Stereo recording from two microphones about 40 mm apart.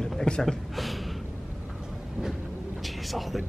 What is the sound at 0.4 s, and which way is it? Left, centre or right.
Speech, centre.